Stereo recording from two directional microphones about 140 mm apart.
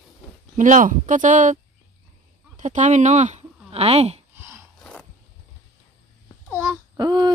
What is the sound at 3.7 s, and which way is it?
Speech, 45° right (ahead or behind).